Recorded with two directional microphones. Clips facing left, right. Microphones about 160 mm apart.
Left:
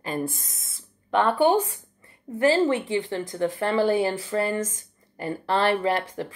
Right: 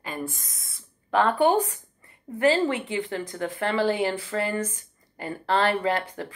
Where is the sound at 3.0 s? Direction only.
30° left (ahead or behind).